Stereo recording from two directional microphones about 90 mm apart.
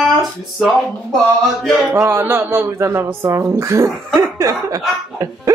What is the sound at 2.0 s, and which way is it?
Speech, 25° right (ahead or behind).